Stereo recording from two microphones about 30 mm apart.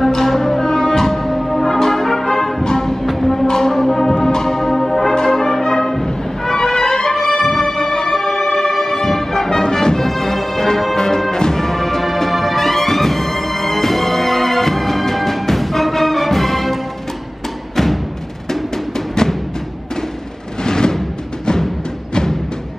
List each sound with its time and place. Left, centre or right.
0.0 s music: centre
0.6 s music: centre
1.0 s music: centre
5.3 s brass instrument: centre
6.5 s music: centre
10.0 s music: centre
18.5 s music: centre
20.6 s music: left